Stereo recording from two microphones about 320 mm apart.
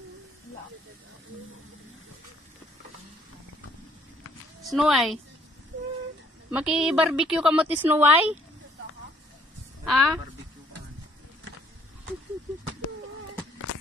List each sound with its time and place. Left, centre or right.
4.6 s a woman's voice: centre
6.5 s a woman's voice: centre
9.8 s a woman's voice: centre